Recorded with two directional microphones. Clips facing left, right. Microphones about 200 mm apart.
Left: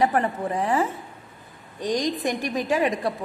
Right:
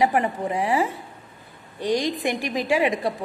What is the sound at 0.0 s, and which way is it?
A woman's voice, 10° right (ahead or behind).